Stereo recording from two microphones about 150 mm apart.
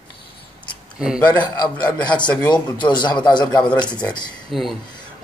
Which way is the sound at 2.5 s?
30° left (ahead or behind).